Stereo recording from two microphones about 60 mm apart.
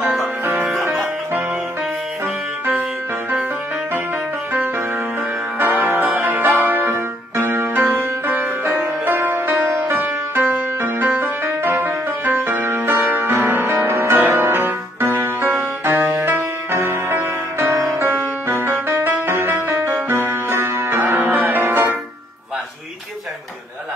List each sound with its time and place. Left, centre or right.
5.8 s music: right